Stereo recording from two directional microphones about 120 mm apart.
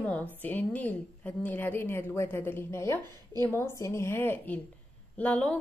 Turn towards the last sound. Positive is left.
turn(degrees=15)  # may be behind; listen again after turning